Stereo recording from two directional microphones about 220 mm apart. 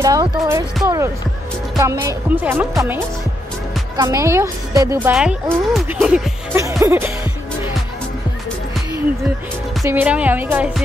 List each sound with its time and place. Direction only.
0.0 s speech: 15° right (ahead or behind)
9.8 s speech: 10° right (ahead or behind)